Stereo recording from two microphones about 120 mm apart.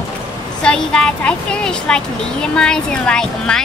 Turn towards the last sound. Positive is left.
turn(degrees=5)  # may be behind; listen again after turning